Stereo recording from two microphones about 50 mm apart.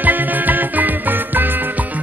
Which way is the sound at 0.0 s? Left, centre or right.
Right.